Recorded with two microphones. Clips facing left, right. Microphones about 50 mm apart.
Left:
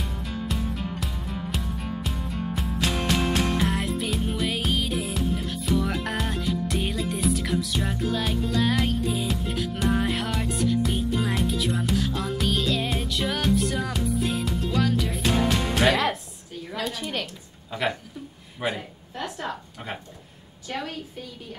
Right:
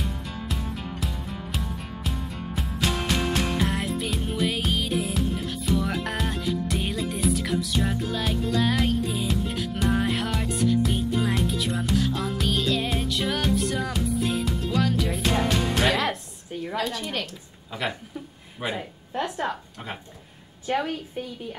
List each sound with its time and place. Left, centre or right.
0.0 s music: centre
16.7 s a woman's voice: centre
18.6 s a woman's voice: centre
19.1 s a woman's voice: right
20.6 s a woman's voice: right